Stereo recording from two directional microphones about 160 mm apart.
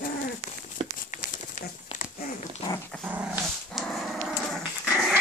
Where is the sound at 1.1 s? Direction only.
50° left (ahead or behind).